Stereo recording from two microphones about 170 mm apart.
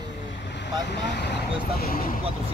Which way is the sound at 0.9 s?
85° left.